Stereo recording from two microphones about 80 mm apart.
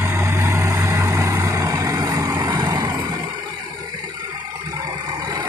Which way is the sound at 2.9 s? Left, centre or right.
Right.